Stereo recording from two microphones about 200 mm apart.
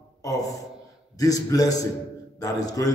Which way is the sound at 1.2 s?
20° left (ahead or behind).